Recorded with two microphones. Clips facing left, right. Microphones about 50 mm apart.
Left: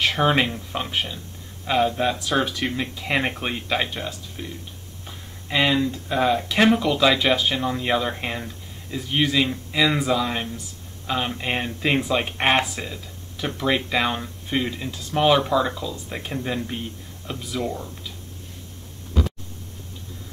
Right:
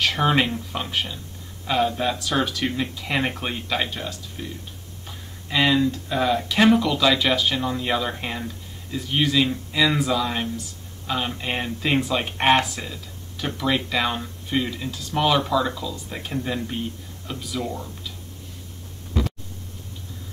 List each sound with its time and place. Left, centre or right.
0.0 s speech: centre
5.8 s speech: centre